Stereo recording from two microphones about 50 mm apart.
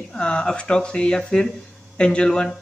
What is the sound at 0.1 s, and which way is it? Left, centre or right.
Speech, centre.